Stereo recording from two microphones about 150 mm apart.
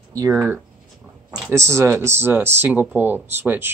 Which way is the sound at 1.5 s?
20° right (ahead or behind).